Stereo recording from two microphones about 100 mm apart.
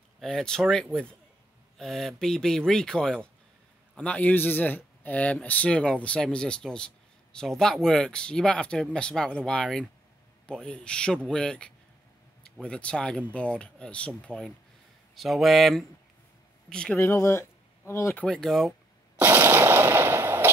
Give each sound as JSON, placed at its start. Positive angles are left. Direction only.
{"t": 0.2, "sound": "speech", "side_deg": 5}
{"t": 17.0, "sound": "speech", "side_deg": 25}
{"t": 18.1, "sound": "speech", "side_deg": 10}
{"t": 18.7, "sound": "a sound", "side_deg": -20}